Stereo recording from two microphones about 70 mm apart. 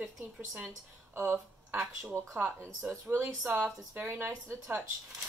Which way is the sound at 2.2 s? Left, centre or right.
Right.